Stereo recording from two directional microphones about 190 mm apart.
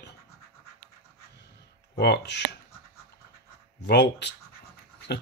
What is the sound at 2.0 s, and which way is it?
Speech, 60° left (ahead or behind).